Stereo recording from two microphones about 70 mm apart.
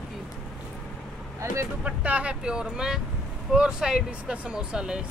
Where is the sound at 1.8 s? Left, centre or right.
Centre.